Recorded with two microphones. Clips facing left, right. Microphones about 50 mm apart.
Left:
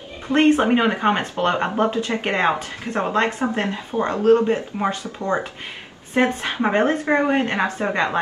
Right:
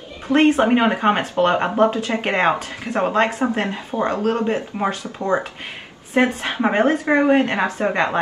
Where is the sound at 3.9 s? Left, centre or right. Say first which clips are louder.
Right 1 dB; right.